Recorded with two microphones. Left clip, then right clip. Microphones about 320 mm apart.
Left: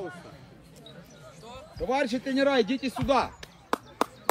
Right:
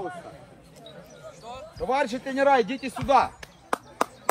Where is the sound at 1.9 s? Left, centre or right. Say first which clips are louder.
Right 2 dB; centre.